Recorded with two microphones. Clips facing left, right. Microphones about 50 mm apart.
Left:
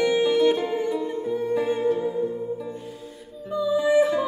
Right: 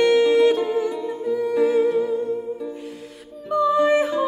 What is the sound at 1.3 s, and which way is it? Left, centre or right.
Music, right.